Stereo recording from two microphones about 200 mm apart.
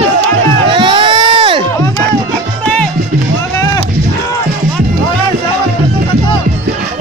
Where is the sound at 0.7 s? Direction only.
25° right (ahead or behind).